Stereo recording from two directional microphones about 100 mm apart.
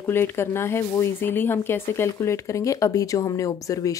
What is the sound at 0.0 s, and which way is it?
A woman's voice, 25° left (ahead or behind).